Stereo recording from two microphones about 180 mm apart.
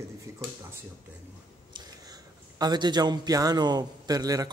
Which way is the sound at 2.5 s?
25° right (ahead or behind).